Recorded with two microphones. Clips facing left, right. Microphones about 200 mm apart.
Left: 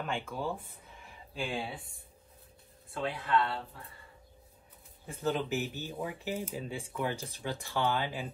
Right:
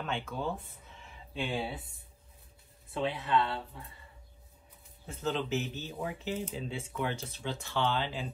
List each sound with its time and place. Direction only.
0.0 s speech: 10° left (ahead or behind)
2.9 s speech: 20° right (ahead or behind)
5.0 s speech: 15° left (ahead or behind)